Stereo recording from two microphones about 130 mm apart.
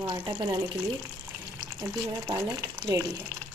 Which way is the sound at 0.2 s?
35° right (ahead or behind).